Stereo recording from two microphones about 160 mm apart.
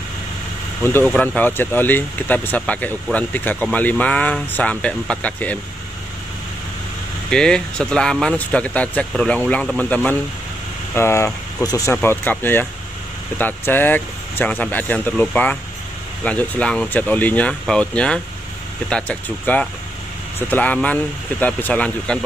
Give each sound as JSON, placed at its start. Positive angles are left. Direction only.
{"t": 0.8, "sound": "speech", "side_deg": 15}
{"t": 7.2, "sound": "speech", "side_deg": 5}